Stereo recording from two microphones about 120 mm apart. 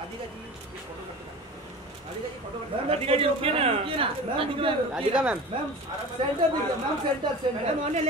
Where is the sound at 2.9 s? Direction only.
50° right (ahead or behind).